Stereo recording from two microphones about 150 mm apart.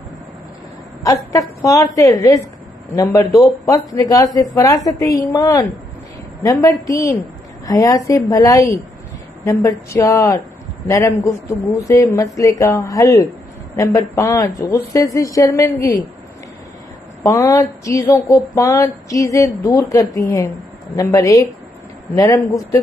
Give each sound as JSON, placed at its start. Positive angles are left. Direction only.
{"t": 1.6, "sound": "speech", "side_deg": 20}
{"t": 17.2, "sound": "speech", "side_deg": 20}